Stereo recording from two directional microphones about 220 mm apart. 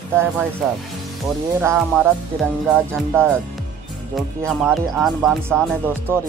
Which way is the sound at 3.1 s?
10° right (ahead or behind).